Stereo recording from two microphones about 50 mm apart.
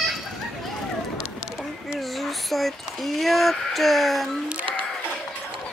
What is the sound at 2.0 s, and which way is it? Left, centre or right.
Speech, centre.